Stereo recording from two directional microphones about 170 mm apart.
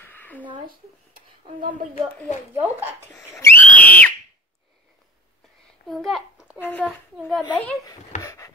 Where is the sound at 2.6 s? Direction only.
15° right (ahead or behind).